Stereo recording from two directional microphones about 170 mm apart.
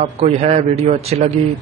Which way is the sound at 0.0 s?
40° right (ahead or behind).